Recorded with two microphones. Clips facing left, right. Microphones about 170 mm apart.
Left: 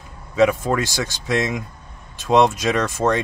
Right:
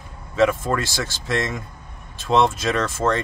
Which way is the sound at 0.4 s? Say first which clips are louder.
Left 2 dB; 15° left (ahead or behind).